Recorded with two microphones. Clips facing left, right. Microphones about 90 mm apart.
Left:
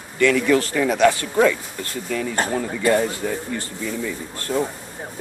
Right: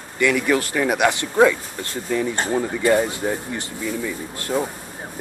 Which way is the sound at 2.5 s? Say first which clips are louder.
Right 2 dB; 20° right (ahead or behind).